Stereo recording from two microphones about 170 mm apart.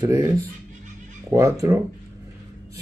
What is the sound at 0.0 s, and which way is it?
Speech, 20° right (ahead or behind).